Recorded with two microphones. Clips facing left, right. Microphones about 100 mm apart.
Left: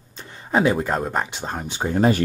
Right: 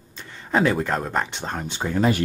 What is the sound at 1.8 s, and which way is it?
Speech, 35° left (ahead or behind).